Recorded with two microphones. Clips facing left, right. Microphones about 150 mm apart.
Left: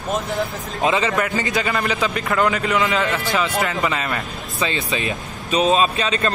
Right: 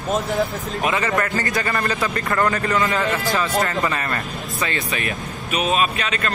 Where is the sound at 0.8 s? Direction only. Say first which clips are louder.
Left 2 dB; 20° left (ahead or behind).